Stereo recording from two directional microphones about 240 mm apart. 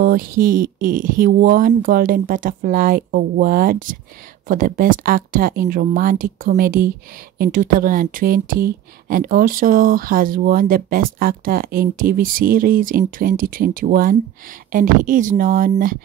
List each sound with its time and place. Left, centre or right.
0.0 s speech: right